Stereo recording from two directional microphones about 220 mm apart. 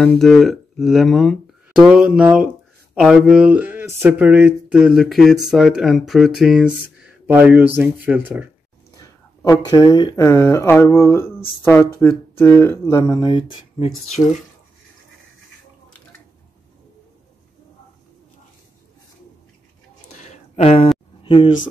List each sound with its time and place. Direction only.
0.0 s speech: 5° left (ahead or behind)
9.4 s speech: 15° left (ahead or behind)
20.2 s a sound: 30° left (ahead or behind)
21.2 s speech: 25° left (ahead or behind)